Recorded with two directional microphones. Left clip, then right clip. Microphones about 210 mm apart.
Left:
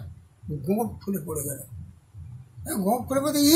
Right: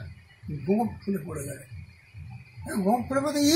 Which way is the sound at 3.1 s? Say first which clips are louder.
Left 2 dB; 30° left (ahead or behind).